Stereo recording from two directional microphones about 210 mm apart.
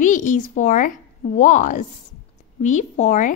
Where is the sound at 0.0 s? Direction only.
35° left (ahead or behind).